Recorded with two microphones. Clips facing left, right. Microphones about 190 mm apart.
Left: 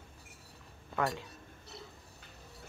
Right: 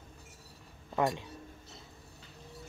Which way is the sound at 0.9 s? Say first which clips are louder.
Right 3 dB; 20° right (ahead or behind).